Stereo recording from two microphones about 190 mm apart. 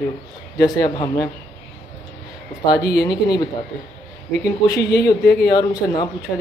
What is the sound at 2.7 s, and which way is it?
Speech, 60° left (ahead or behind).